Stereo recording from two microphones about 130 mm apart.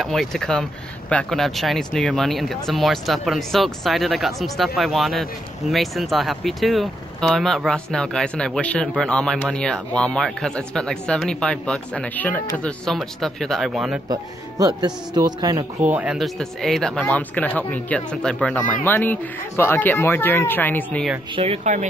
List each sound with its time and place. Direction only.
0.0 s speech: centre (ahead or behind)
14.0 s a man's voice: 30° right (ahead or behind)
15.8 s speech: 10° right (ahead or behind)
16.2 s speech: centre (ahead or behind)
21.4 s speech: 60° right (ahead or behind)